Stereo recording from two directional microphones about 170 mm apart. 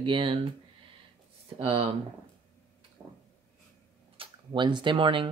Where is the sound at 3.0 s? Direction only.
10° right (ahead or behind).